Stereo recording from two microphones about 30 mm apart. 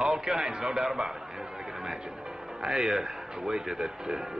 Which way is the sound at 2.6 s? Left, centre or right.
Centre.